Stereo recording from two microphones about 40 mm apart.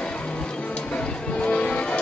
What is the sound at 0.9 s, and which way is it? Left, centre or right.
Music, left.